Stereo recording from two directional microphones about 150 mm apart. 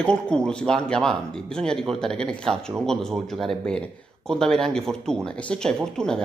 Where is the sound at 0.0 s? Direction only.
5° left (ahead or behind).